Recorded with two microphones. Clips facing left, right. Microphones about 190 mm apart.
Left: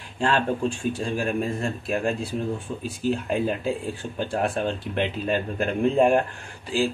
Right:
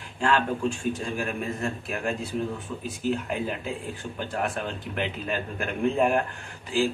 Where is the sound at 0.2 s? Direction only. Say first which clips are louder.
Left 1 dB; 30° left (ahead or behind).